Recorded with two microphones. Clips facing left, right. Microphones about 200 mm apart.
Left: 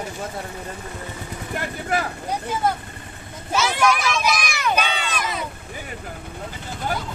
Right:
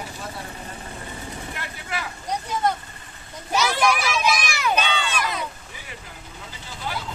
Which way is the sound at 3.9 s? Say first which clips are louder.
Left 1 dB; 5° right (ahead or behind).